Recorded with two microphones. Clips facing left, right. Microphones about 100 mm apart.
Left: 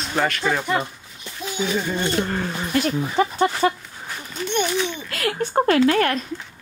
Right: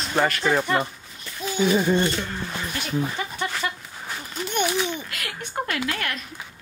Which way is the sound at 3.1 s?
35° left (ahead or behind).